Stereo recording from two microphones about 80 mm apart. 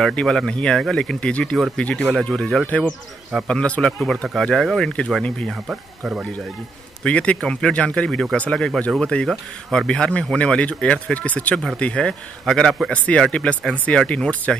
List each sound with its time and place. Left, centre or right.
0.0 s speech: centre
2.6 s speech: centre
5.7 s speech: centre
7.0 s speech: centre